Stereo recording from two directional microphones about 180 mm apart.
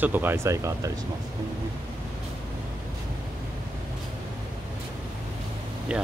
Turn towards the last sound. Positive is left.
turn(degrees=-5)  # may be behind; listen again after turning